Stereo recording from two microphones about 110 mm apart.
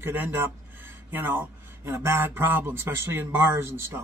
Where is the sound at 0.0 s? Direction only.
20° right (ahead or behind).